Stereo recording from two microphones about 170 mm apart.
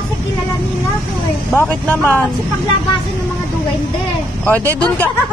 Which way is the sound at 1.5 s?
10° left (ahead or behind).